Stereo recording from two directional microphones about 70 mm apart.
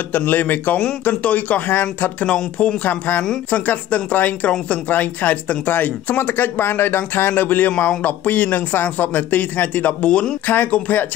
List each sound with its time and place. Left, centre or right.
0.1 s speech: left
2.8 s speech: left